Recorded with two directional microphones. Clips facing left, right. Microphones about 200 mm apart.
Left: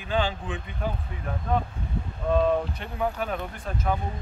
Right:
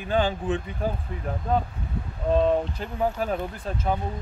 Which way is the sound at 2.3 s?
30° right (ahead or behind).